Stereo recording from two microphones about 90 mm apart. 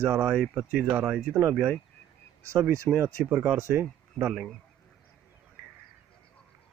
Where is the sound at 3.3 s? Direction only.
20° right (ahead or behind).